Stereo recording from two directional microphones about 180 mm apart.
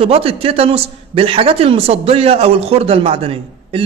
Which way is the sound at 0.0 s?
30° right (ahead or behind).